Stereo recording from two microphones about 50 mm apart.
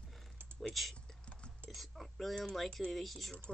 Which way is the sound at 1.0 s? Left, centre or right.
Left.